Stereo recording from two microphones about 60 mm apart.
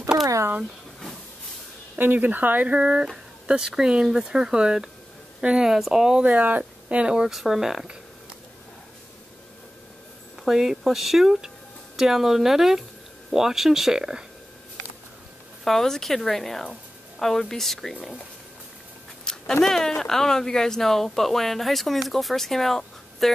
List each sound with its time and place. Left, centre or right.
0.1 s a sound: right
2.0 s speech: right
2.8 s speech: centre
6.2 s speech: right
10.4 s speech: centre
15.6 s speech: centre
19.2 s a sound: centre
20.0 s speech: centre